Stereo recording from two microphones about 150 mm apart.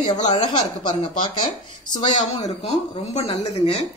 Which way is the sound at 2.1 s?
45° left (ahead or behind).